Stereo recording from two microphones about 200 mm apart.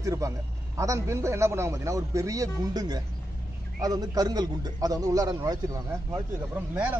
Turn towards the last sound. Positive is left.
turn(degrees=-10)  # may be behind; listen again after turning